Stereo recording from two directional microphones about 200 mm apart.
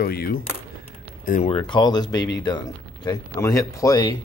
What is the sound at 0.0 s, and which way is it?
Speech, 50° left (ahead or behind).